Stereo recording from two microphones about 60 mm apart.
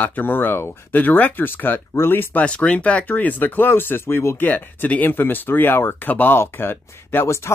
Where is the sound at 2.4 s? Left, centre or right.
Centre; by 4.3 s left.